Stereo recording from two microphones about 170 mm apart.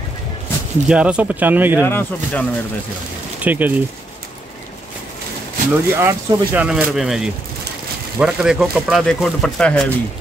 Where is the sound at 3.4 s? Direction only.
10° right (ahead or behind).